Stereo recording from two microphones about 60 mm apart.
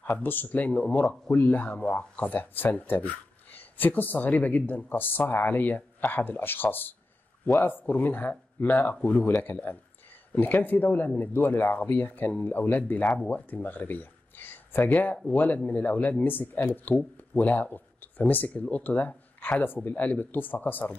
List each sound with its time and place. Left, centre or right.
0.2 s speech: left